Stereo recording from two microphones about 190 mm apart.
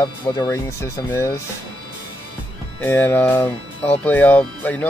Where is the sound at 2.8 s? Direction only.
10° left (ahead or behind).